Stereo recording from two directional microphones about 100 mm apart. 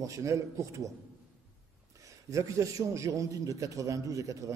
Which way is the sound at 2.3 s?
30° right (ahead or behind).